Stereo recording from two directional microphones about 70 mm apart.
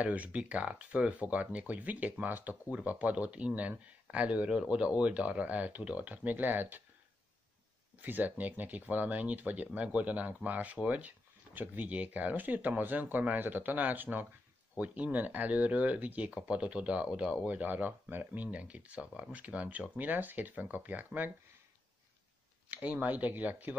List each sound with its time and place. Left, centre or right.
0.0 s speech: centre
8.0 s speech: right
22.7 s speech: right